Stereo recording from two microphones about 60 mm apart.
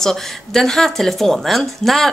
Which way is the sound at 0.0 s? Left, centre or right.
Centre.